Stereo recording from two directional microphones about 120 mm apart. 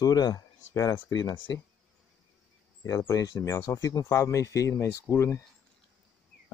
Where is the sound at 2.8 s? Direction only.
30° left (ahead or behind).